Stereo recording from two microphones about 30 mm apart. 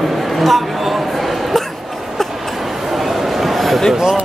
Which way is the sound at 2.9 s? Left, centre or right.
Centre.